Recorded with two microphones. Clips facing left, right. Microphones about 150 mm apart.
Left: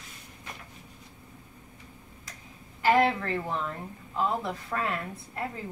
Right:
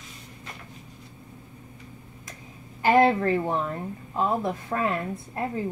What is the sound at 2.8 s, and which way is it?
A woman's voice, 25° right (ahead or behind).